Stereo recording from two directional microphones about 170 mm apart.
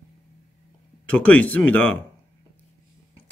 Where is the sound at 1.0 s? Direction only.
10° left (ahead or behind).